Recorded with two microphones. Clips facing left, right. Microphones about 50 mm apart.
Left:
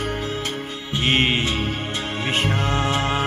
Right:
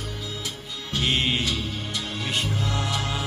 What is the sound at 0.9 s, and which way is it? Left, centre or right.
Music, left.